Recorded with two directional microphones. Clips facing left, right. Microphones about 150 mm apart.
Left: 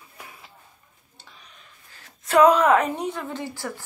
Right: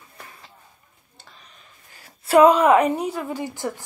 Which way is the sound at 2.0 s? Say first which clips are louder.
Right 3 dB; 10° right (ahead or behind).